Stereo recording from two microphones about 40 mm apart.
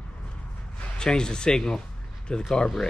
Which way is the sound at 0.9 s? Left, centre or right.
Centre.